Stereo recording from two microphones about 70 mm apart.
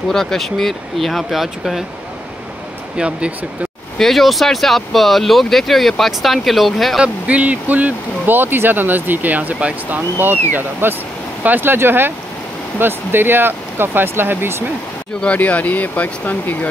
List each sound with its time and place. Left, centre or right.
0.1 s speech: centre
3.0 s speech: centre
4.0 s speech: centre
7.0 s speech: centre
10.5 s speech: right
15.2 s speech: left